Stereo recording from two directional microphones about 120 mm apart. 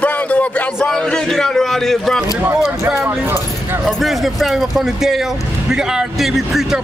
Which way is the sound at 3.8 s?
Centre (ahead or behind).